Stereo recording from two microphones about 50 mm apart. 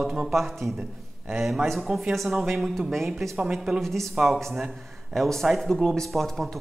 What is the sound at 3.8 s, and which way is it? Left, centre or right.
Speech, centre.